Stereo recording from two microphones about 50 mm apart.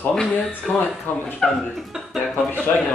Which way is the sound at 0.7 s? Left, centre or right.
Left.